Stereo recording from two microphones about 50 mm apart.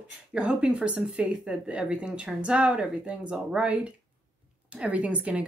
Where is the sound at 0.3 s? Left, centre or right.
Centre.